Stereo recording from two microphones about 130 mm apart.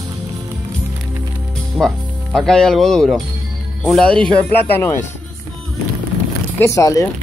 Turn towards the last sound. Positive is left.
turn(degrees=25)  # may be behind; listen again after turning